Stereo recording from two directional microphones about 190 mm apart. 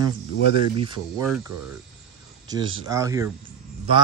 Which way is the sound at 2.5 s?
20° right (ahead or behind).